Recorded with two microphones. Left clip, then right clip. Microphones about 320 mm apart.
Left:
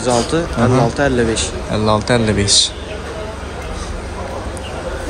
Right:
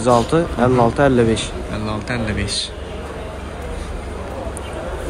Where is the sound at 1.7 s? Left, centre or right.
Centre.